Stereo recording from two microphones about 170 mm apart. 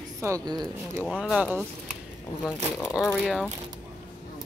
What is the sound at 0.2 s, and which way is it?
Speech, 20° right (ahead or behind).